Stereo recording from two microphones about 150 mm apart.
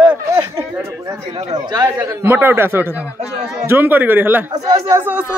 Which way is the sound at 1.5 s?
25° right (ahead or behind).